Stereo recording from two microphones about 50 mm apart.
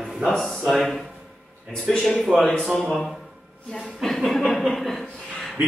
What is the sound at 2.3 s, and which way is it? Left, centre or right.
Speech, centre.